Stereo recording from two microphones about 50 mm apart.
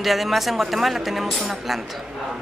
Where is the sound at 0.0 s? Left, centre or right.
Centre.